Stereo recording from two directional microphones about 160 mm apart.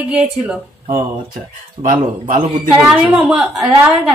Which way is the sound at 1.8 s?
55° right (ahead or behind).